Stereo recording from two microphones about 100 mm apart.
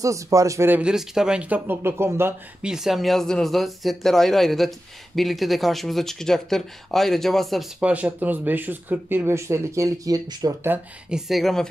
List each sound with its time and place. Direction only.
0.0 s a man's voice: 35° right (ahead or behind)
0.7 s speech: 10° right (ahead or behind)
2.6 s speech: 5° right (ahead or behind)
7.8 s speech: 15° right (ahead or behind); by 10.5 s 40° right (ahead or behind)
11.1 s speech: 5° right (ahead or behind)